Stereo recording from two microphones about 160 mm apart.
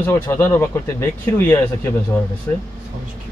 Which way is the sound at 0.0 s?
15° left (ahead or behind).